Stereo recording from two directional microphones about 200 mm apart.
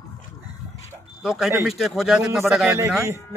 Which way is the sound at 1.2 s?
5° right (ahead or behind).